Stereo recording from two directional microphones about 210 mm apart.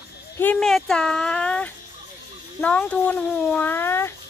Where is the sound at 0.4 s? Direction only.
5° left (ahead or behind).